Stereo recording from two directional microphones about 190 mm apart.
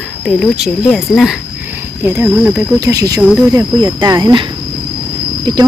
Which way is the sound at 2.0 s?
10° right (ahead or behind).